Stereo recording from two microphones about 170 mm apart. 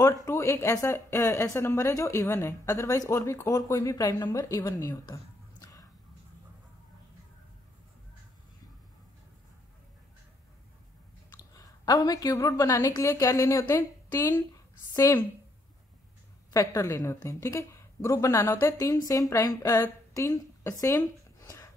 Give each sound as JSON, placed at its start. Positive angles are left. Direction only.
{"t": 0.0, "sound": "speech", "side_deg": 20}
{"t": 11.3, "sound": "a woman's voice", "side_deg": 20}
{"t": 16.5, "sound": "a woman's voice", "side_deg": 20}